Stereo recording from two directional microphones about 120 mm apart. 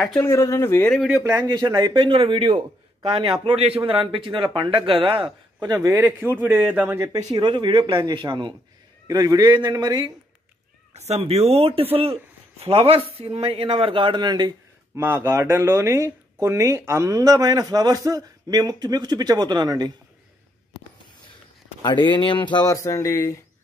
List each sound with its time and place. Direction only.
0.2 s speech: 25° left (ahead or behind)
1.8 s speech: 40° right (ahead or behind)
3.4 s a man's voice: 55° right (ahead or behind)
3.8 s speech: 45° right (ahead or behind)
5.7 s a man's voice: 30° right (ahead or behind)
6.0 s a man's voice: 15° right (ahead or behind)
7.1 s a man's voice: 35° right (ahead or behind)
9.0 s a man's voice: 30° right (ahead or behind)
10.9 s speech: 65° right (ahead or behind); by 14.5 s 40° right (ahead or behind)
15.0 s speech: 20° right (ahead or behind); by 19.9 s 35° right (ahead or behind)
21.8 s speech: 40° left (ahead or behind); by 23.4 s 25° left (ahead or behind)